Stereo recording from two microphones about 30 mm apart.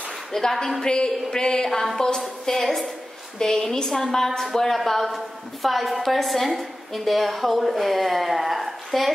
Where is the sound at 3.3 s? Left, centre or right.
Centre.